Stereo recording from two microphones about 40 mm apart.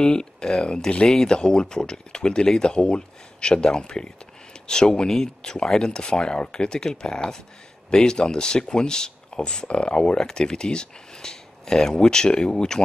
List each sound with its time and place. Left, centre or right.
0.0 s speech: centre